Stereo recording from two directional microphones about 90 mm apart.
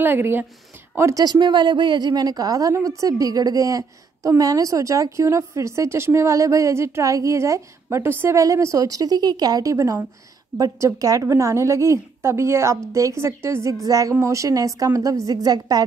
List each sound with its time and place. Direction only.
0.0 s speech: 20° right (ahead or behind)
1.2 s a woman's voice: 55° right (ahead or behind)